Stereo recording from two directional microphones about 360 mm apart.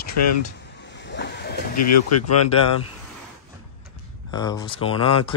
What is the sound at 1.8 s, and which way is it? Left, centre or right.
Speech, left.